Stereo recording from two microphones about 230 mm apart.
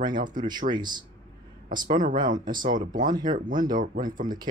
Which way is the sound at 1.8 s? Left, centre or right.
Right.